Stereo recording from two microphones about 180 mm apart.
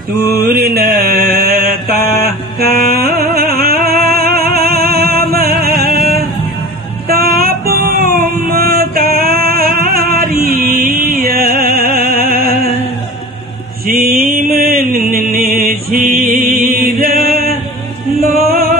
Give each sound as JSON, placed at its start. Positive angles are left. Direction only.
{"t": 0.3, "sound": "mantra", "side_deg": -55}
{"t": 2.6, "sound": "music", "side_deg": -60}
{"t": 13.8, "sound": "music", "side_deg": -55}